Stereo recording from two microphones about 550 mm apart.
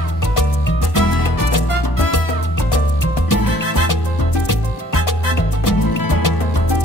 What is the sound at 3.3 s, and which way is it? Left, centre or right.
Music, left.